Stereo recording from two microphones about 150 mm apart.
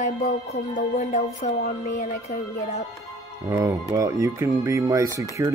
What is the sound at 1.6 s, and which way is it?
Music, 85° left.